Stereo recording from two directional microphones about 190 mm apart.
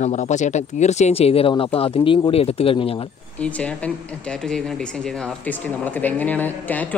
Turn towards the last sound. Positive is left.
turn(degrees=10)  # may be behind; listen again after turning